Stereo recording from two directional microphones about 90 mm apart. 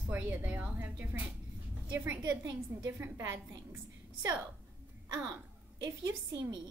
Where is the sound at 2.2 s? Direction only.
45° right (ahead or behind).